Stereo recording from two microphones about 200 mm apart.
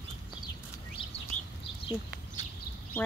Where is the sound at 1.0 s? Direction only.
25° left (ahead or behind).